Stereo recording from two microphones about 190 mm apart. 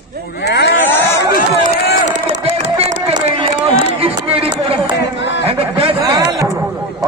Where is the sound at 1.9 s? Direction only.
70° left (ahead or behind).